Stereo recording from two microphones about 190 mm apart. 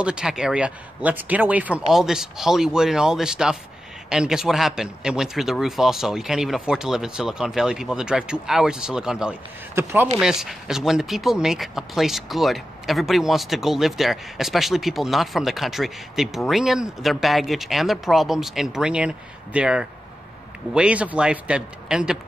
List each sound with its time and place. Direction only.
0.0 s speech: 5° right (ahead or behind)
9.8 s speech: 15° right (ahead or behind)
10.2 s speech: 5° right (ahead or behind)